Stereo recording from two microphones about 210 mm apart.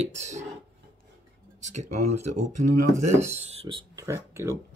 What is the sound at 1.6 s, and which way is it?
Speech, 35° right (ahead or behind).